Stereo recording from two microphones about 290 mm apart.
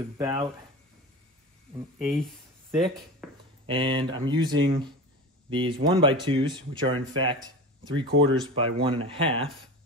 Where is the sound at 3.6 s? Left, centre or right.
Centre.